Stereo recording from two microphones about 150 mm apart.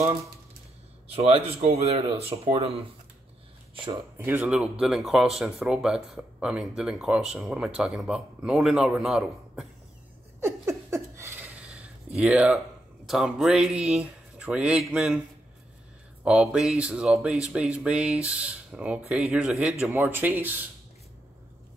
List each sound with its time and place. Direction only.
1.1 s speech: 45° right (ahead or behind)
3.9 s speech: 15° right (ahead or behind)
10.4 s a sound: 15° right (ahead or behind)
13.0 s music: centre (ahead or behind)
16.3 s music: 5° right (ahead or behind)